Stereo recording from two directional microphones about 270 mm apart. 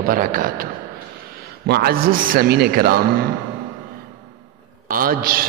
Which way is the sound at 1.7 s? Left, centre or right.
Right.